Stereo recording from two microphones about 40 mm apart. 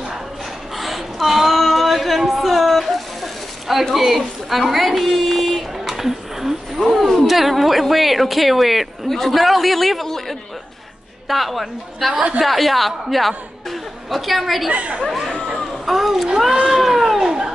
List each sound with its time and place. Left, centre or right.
0.7 s a sound: centre
3.9 s a woman's voice: centre
13.7 s chuckle: centre
14.7 s a woman's voice: right
15.5 s a sound: centre
16.6 s cat: centre